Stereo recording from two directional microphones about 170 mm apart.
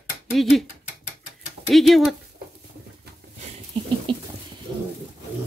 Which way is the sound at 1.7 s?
Centre (ahead or behind).